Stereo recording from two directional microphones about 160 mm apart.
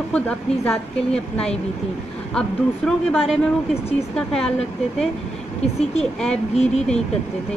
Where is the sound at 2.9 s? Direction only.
Centre (ahead or behind).